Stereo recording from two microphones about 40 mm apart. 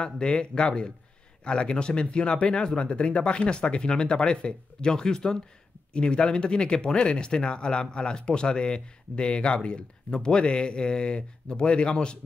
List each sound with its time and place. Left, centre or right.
0.0 s speech: left